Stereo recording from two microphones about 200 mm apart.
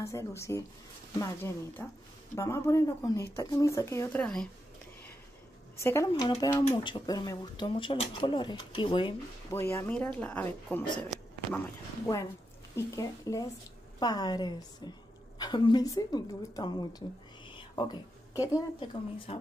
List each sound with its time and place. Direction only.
0.0 s speech: 15° left (ahead or behind)
5.8 s speech: 15° left (ahead or behind)
9.5 s speech: 10° left (ahead or behind)
11.0 s a sound: 5° left (ahead or behind)
12.7 s speech: 15° left (ahead or behind)
17.5 s a sound: 25° left (ahead or behind)
19.3 s speech: 30° left (ahead or behind)